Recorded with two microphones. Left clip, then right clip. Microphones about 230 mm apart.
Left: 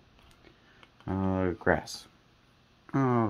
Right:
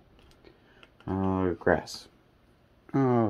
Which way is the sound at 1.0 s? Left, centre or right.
Left.